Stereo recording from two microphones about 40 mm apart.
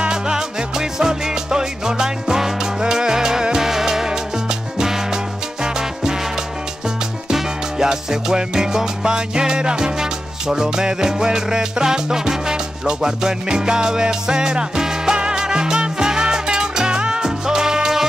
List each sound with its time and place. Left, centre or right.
0.1 s music: centre
7.2 s music: centre